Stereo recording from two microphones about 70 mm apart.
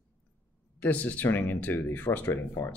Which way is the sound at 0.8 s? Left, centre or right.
Left.